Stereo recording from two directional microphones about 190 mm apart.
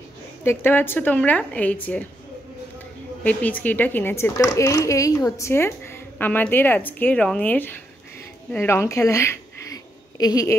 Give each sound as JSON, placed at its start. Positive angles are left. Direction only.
{"t": 0.4, "sound": "speech", "side_deg": 10}
{"t": 3.3, "sound": "a woman's voice", "side_deg": 10}